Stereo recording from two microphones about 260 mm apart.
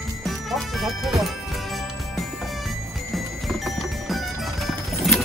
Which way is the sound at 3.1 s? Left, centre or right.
Centre.